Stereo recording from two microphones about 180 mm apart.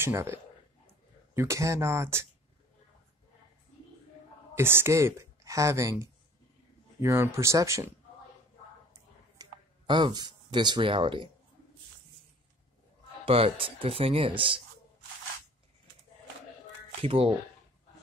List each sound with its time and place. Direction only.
0.0 s speech: 15° right (ahead or behind)
4.6 s speech: 15° right (ahead or behind)
9.4 s speech: 25° right (ahead or behind)
13.2 s speech: 30° right (ahead or behind)
17.0 s speech: 30° right (ahead or behind)